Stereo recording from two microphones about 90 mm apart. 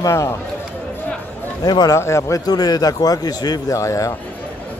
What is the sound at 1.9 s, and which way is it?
Speech, 35° left (ahead or behind).